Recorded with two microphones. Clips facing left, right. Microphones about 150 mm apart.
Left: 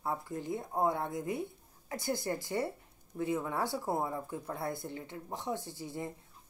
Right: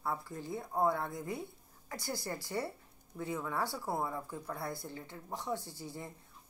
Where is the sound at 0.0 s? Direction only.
20° left (ahead or behind).